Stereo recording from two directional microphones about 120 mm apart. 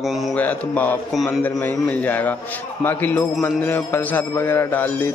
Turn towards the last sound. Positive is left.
turn(degrees=15)  # may be behind; listen again after turning